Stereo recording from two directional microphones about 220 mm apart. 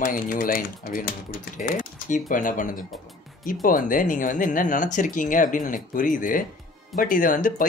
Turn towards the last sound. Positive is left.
turn(degrees=40)  # may be behind; listen again after turning